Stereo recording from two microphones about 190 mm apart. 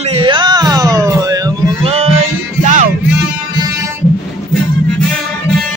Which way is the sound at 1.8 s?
35° right (ahead or behind).